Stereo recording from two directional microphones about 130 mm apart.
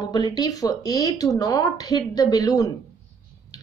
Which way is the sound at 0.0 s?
30° left (ahead or behind).